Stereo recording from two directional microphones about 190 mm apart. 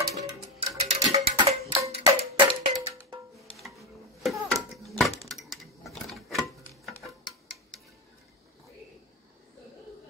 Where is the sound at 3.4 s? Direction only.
Centre (ahead or behind).